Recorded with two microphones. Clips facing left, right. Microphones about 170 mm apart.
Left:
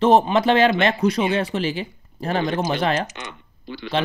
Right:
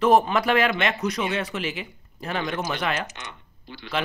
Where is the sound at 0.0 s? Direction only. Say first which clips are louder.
Left 3 dB; 25° left (ahead or behind).